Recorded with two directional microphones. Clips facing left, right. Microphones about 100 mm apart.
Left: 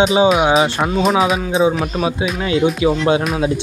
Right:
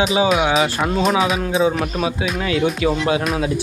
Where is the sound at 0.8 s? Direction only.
5° left (ahead or behind).